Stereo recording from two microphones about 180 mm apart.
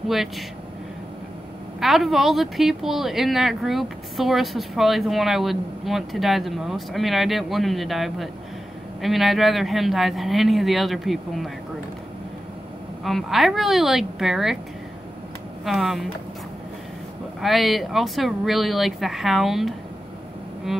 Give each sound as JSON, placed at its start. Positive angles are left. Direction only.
{"t": 1.8, "sound": "a woman's voice", "side_deg": 0}
{"t": 13.0, "sound": "a woman's voice", "side_deg": 0}
{"t": 15.6, "sound": "a woman's voice", "side_deg": 0}
{"t": 17.4, "sound": "a woman's voice", "side_deg": 0}